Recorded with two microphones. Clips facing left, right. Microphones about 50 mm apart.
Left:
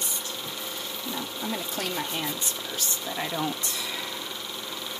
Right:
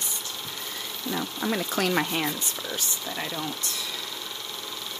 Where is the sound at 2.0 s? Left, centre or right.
Right.